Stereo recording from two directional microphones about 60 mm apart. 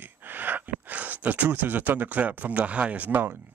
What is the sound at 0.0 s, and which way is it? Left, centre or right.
Gasp, right.